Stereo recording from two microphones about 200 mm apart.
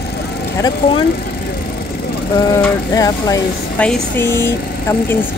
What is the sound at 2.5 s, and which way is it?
Speech, 20° left (ahead or behind).